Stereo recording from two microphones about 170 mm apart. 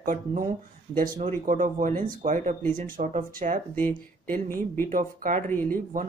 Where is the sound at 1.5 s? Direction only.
50° right (ahead or behind).